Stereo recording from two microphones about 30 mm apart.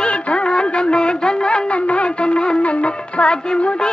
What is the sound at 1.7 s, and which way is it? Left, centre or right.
Music, left.